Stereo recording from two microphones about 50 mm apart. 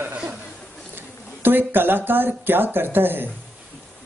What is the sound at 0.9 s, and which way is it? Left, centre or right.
Speech, right.